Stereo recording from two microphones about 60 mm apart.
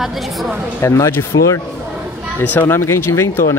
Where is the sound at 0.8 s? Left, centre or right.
Left.